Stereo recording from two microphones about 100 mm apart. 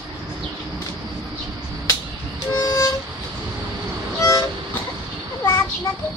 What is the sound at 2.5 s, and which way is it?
Music, 35° left (ahead or behind).